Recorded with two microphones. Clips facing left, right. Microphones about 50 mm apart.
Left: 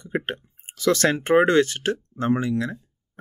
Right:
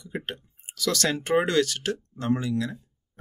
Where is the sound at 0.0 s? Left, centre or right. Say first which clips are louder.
Left 7 dB; left.